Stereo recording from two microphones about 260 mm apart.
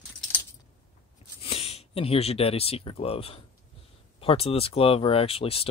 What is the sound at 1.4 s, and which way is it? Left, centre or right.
Speech, left.